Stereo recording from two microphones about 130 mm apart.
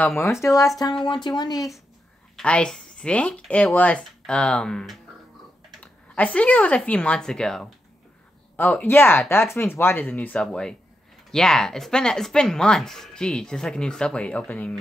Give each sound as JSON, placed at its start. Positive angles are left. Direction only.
{"t": 0.0, "sound": "speech", "side_deg": 20}
{"t": 1.0, "sound": "speech", "side_deg": 35}
{"t": 2.3, "sound": "speech", "side_deg": 5}